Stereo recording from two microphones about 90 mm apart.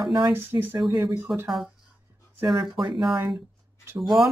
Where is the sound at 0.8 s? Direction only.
45° right (ahead or behind).